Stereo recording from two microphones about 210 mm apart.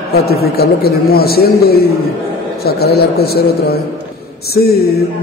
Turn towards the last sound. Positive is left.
turn(degrees=50)  # may be behind; listen again after turning